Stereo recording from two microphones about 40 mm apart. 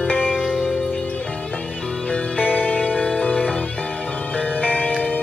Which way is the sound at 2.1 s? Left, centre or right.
Left.